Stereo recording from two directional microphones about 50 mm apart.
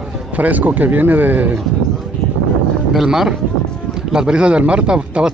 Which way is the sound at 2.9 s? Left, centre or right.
Centre.